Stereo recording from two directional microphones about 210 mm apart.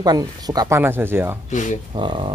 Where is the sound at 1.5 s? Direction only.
35° left (ahead or behind).